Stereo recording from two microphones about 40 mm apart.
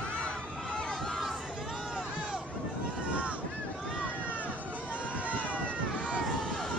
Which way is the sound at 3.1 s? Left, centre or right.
Right.